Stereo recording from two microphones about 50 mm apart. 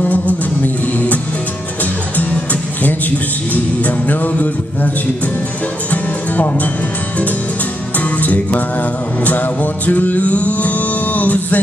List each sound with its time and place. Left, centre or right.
0.0 s music: left
8.2 s music: left